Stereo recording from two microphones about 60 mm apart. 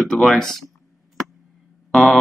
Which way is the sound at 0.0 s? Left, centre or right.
Centre.